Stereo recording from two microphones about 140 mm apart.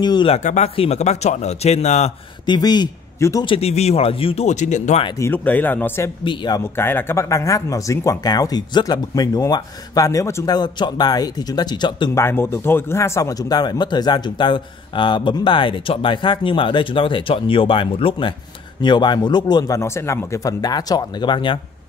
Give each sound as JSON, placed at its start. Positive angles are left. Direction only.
{"t": 0.0, "sound": "speech", "side_deg": 30}
{"t": 0.3, "sound": "speech", "side_deg": 55}
{"t": 2.4, "sound": "speech", "side_deg": 30}
{"t": 3.4, "sound": "speech", "side_deg": 45}
{"t": 5.2, "sound": "speech", "side_deg": 15}
{"t": 6.2, "sound": "speech", "side_deg": 30}
{"t": 6.6, "sound": "speech", "side_deg": 15}
{"t": 12.1, "sound": "speech", "side_deg": 20}